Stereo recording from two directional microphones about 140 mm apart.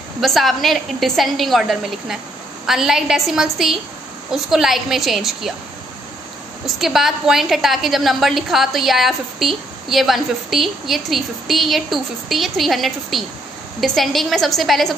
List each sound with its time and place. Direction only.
0.2 s a woman's voice: centre (ahead or behind)
6.6 s a woman's voice: centre (ahead or behind)